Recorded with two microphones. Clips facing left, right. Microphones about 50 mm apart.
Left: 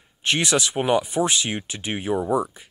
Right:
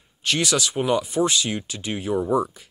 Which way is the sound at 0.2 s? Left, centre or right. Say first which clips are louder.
Left 1 dB; left.